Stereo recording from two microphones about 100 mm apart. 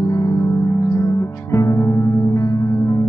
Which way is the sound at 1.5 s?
35° left (ahead or behind).